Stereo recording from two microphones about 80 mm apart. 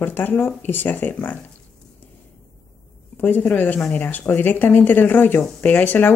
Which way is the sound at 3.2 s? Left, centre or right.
Left.